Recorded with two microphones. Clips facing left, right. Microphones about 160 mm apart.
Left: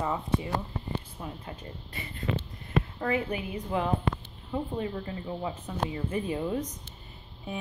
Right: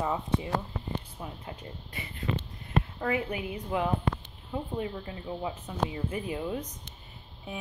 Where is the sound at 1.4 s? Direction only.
15° right (ahead or behind).